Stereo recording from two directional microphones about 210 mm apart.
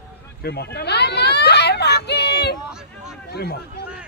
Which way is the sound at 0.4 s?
50° left (ahead or behind).